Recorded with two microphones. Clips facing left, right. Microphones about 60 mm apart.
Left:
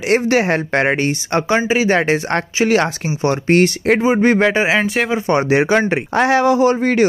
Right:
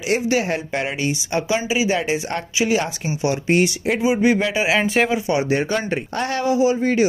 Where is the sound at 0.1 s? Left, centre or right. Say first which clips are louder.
Left 5 dB; left.